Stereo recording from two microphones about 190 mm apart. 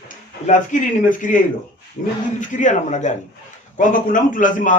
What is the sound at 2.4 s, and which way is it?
A man's voice, 40° left (ahead or behind).